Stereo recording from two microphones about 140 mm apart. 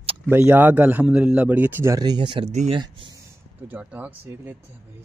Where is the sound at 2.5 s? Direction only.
55° right (ahead or behind).